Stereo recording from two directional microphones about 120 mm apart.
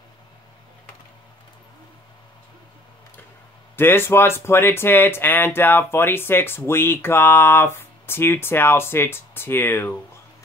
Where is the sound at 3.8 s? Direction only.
20° left (ahead or behind).